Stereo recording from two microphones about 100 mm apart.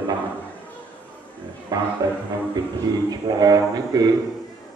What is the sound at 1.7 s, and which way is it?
Speech, 40° right (ahead or behind).